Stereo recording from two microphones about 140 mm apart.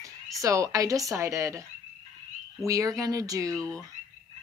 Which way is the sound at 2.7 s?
25° right (ahead or behind).